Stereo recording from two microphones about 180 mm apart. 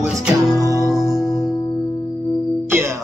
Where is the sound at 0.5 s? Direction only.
20° right (ahead or behind).